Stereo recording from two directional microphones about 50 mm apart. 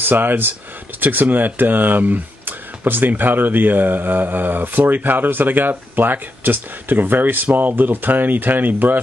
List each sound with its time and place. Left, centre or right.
0.0 s speech: right